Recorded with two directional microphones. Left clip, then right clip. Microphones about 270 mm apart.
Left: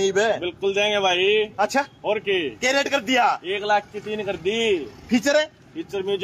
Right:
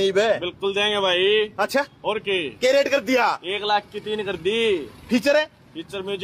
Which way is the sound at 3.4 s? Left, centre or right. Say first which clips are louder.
Left 1 dB; right.